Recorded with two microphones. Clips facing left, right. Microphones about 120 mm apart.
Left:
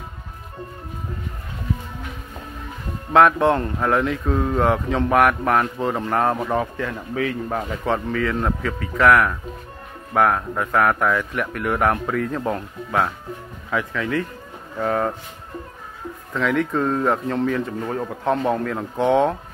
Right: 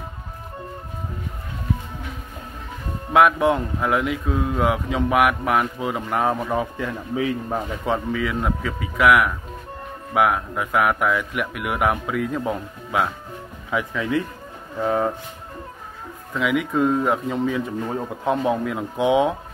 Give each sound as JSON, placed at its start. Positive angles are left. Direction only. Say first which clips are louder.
{"t": 3.1, "sound": "speech", "louder": "left 1 dB", "side_deg": -10}
{"t": 16.3, "sound": "speech", "louder": "even", "side_deg": -10}